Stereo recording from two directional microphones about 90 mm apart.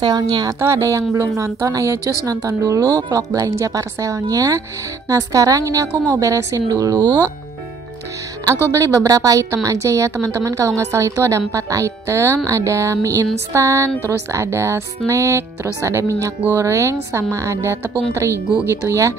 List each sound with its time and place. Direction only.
0.0 s a woman's voice: 45° right (ahead or behind)
0.6 s speech: 30° right (ahead or behind)
8.7 s speech: 40° right (ahead or behind)